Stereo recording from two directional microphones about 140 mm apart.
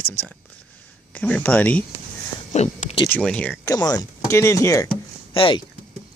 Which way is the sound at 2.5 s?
55° left (ahead or behind).